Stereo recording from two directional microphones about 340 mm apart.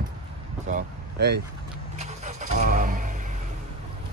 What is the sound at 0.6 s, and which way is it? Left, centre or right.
Speech, right.